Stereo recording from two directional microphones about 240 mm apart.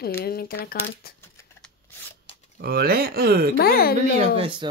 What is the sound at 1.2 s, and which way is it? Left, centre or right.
Shuffling cards, centre.